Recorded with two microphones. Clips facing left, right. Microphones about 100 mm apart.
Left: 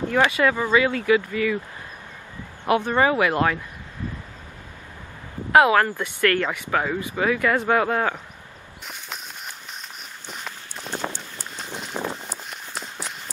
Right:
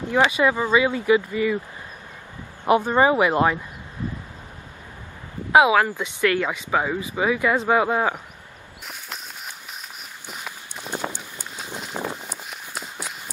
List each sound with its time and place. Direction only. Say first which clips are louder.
0.1 s speech: right 2 dB; 15° right (ahead or behind)
2.6 s speech: right 2 dB; 15° right (ahead or behind)
5.5 s speech: even; 10° right (ahead or behind)
10.2 s run: even; 5° right (ahead or behind)